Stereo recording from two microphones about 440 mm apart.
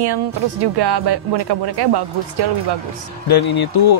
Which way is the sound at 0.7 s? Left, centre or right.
Right.